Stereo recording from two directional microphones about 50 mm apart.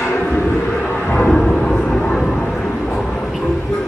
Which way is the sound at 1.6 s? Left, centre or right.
Centre.